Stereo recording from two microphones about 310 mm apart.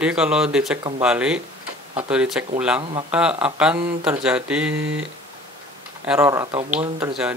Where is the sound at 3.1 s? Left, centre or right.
Centre.